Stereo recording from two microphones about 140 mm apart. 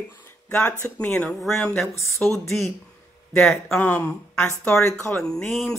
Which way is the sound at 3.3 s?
Centre (ahead or behind).